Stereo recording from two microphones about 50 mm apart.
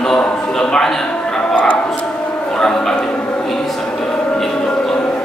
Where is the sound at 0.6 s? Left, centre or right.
Centre.